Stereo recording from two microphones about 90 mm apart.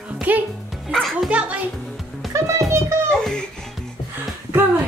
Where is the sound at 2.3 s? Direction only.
30° right (ahead or behind).